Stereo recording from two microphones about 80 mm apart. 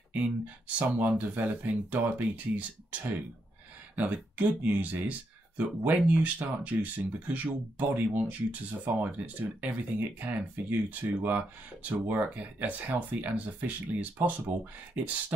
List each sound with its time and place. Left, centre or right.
0.7 s speech: centre